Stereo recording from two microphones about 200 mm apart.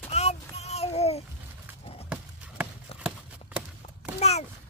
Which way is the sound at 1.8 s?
30° left (ahead or behind).